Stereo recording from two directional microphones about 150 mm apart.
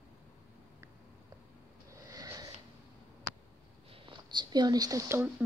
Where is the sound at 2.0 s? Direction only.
20° right (ahead or behind).